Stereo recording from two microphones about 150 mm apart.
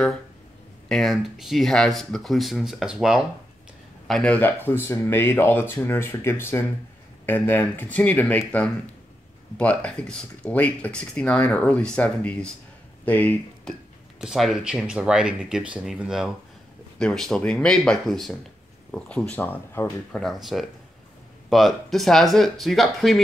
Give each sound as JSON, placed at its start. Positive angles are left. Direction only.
{"t": 0.8, "sound": "speech", "side_deg": 0}
{"t": 4.1, "sound": "speech", "side_deg": 10}
{"t": 14.2, "sound": "speech", "side_deg": 0}
{"t": 20.1, "sound": "speech", "side_deg": 0}